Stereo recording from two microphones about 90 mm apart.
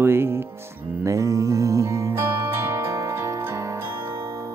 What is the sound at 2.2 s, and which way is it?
Music, 25° right (ahead or behind).